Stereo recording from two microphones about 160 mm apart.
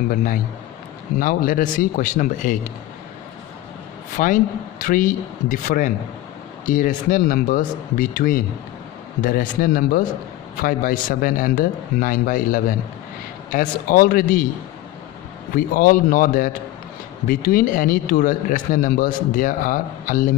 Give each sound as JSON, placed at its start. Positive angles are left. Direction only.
{"t": 0.1, "sound": "a man's voice", "side_deg": 60}
{"t": 4.2, "sound": "a man's voice", "side_deg": 55}
{"t": 15.5, "sound": "a man's voice", "side_deg": 60}